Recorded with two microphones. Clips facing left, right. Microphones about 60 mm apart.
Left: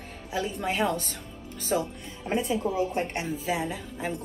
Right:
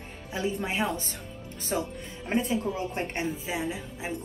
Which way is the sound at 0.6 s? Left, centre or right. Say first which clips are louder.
Left 2 dB; centre.